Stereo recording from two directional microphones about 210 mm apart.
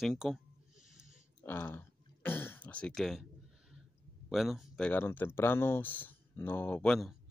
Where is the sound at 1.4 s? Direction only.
10° left (ahead or behind).